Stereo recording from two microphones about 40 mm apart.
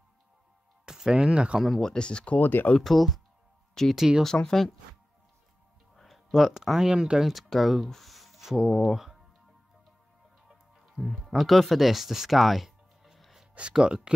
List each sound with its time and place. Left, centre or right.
0.8 s music: centre
1.2 s speech: right
1.8 s speech: centre
2.3 s speech: left
2.8 s speech: centre
5.9 s speech: centre
7.2 s speech: centre
7.9 s a sound: centre
8.6 s speech: centre
8.9 s music: centre
10.5 s music: centre
11.2 s speech: centre
13.7 s speech: right